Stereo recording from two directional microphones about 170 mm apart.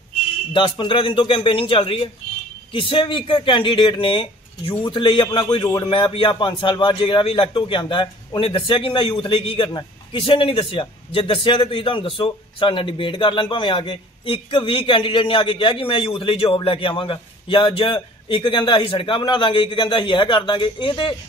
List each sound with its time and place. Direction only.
0.5 s a man's voice: 30° left (ahead or behind)